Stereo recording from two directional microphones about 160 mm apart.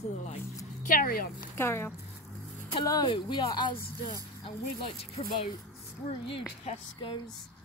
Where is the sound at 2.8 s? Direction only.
25° left (ahead or behind).